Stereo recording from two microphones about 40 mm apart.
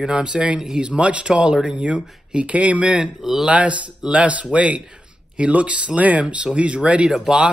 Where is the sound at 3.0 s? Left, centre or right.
Centre.